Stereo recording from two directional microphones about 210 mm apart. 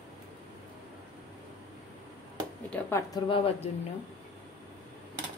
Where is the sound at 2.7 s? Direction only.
10° left (ahead or behind).